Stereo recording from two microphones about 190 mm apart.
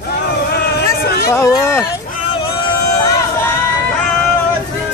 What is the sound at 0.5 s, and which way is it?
Vehicle, 55° left (ahead or behind).